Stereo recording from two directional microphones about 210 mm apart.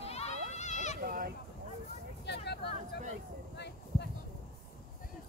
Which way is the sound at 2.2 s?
55° left (ahead or behind).